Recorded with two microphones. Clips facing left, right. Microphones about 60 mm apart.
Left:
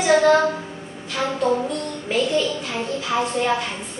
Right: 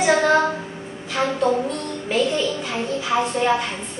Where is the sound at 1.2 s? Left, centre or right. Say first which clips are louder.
Right 2 dB; right.